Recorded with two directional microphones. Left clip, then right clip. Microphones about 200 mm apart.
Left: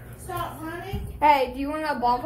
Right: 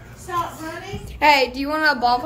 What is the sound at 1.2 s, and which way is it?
Speech, 25° right (ahead or behind).